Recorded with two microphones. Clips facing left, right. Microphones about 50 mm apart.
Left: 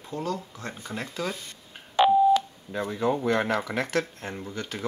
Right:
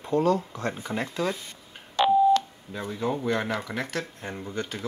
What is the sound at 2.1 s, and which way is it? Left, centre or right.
Busy signal, centre.